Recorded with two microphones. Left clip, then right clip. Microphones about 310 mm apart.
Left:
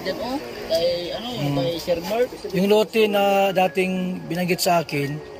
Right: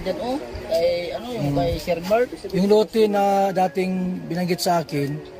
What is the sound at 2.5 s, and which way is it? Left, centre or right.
A man's voice, centre.